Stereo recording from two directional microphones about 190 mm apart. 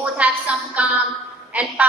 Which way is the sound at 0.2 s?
5° right (ahead or behind).